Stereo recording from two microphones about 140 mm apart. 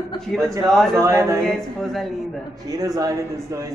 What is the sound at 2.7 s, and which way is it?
A woman's voice, 25° right (ahead or behind).